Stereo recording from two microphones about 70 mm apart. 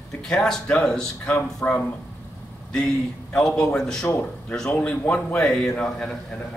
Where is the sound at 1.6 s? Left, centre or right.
Left.